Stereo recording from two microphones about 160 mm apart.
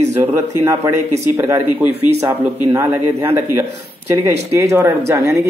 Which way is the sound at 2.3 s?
15° right (ahead or behind).